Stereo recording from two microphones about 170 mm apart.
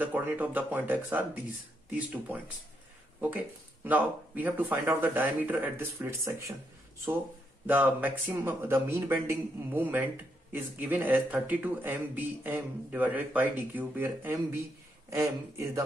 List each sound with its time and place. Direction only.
0.0 s speech: 10° right (ahead or behind)
7.6 s speech: 10° right (ahead or behind)